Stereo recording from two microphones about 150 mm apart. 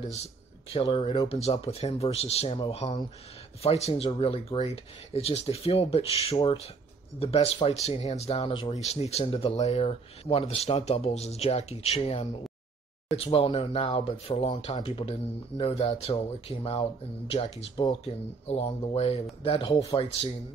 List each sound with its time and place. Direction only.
0.7 s speech: 40° left (ahead or behind)
2.8 s speech: 25° left (ahead or behind)
3.6 s speech: 45° left (ahead or behind)
19.7 s speech: 25° left (ahead or behind)